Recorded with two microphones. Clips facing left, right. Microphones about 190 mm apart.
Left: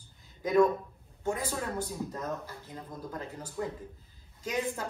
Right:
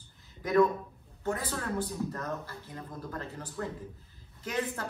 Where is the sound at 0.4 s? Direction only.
20° left (ahead or behind).